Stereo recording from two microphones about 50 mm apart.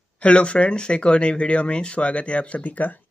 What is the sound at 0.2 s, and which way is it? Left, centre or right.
Speech, left.